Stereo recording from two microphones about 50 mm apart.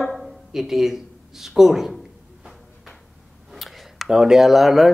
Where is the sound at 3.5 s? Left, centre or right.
Centre.